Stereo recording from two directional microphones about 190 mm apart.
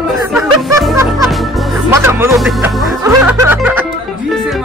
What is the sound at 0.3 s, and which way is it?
Music, 15° right (ahead or behind).